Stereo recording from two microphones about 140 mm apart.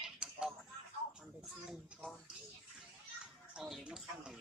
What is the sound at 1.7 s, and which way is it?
Speech, centre (ahead or behind).